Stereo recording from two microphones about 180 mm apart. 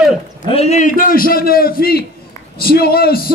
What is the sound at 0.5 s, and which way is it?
A man's voice, 35° left (ahead or behind).